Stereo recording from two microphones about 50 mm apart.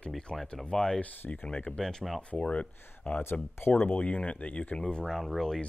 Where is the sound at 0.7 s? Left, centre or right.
Centre.